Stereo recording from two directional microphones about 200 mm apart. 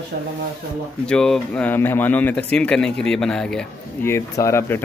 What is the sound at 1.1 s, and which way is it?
A man's voice, 5° left (ahead or behind).